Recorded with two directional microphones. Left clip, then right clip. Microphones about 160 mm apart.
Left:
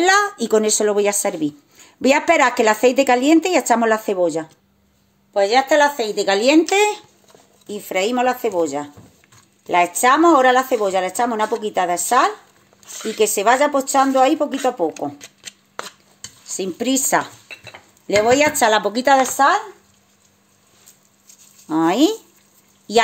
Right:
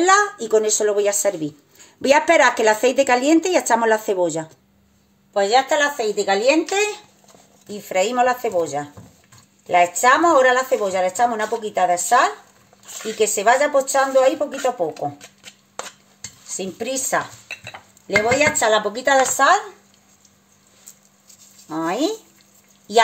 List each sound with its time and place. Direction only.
0.0 s a child's voice: 60° left (ahead or behind); by 4.5 s 25° left (ahead or behind)
5.3 s speech: 40° left (ahead or behind); by 7.0 s 90° left
7.6 s a woman's voice: 65° left (ahead or behind)
16.5 s a woman's voice: 75° left (ahead or behind)
19.3 s speech: 30° left (ahead or behind)
21.6 s a woman's voice: 70° left (ahead or behind)
22.9 s speech: 55° left (ahead or behind)